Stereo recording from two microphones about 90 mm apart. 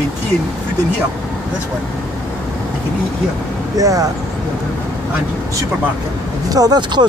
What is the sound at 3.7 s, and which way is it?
Speech, 40° right (ahead or behind).